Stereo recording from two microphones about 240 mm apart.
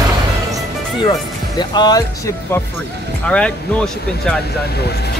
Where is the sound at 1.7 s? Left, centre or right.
Centre.